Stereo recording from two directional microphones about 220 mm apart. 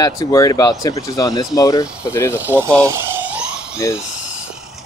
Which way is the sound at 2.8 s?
10° right (ahead or behind).